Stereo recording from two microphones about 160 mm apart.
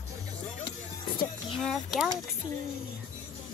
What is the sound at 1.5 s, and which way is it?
Speech, centre (ahead or behind).